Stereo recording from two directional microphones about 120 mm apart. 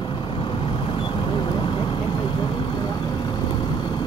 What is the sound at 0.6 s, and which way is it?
Vehicle, 45° left (ahead or behind).